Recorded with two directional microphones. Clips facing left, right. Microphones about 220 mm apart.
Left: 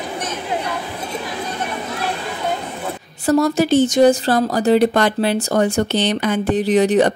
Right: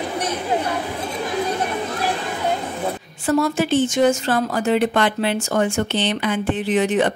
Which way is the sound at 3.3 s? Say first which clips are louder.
Left 4 dB; 40° left (ahead or behind).